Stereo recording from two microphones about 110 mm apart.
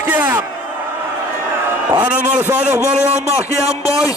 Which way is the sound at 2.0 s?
10° right (ahead or behind).